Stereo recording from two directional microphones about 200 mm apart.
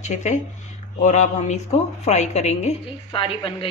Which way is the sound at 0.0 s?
35° left (ahead or behind).